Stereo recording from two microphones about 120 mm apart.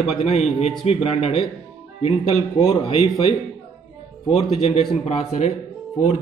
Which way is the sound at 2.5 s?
45° left (ahead or behind).